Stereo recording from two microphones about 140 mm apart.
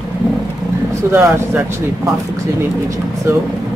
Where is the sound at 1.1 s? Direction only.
15° right (ahead or behind).